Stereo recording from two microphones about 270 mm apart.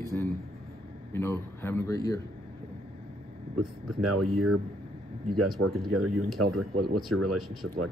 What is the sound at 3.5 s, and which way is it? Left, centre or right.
Speech, right.